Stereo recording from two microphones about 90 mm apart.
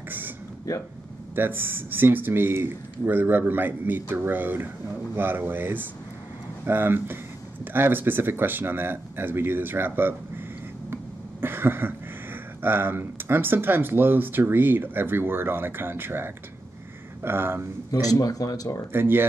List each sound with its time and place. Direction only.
1.3 s speech: 25° right (ahead or behind)
11.4 s cough: 25° right (ahead or behind)
12.6 s speech: 25° right (ahead or behind)
18.0 s speech: 40° left (ahead or behind)
18.9 s speech: 25° right (ahead or behind)